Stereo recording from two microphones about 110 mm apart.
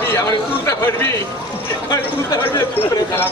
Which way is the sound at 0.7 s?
25° left (ahead or behind).